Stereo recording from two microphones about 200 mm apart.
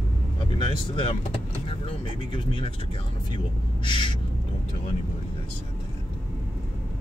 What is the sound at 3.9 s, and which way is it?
Owl, 25° left (ahead or behind).